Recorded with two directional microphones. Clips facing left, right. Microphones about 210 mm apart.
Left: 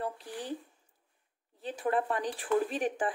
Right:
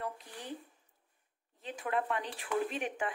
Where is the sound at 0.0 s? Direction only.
35° left (ahead or behind).